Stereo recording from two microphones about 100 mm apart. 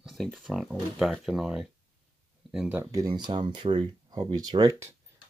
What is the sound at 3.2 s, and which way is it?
Speech, 50° right (ahead or behind).